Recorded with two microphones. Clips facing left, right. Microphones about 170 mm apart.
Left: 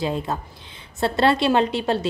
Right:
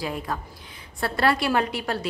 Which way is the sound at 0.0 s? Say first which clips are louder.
Left 5 dB; 25° left (ahead or behind).